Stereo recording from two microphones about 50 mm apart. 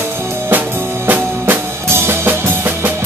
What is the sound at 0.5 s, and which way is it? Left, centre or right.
Music, right.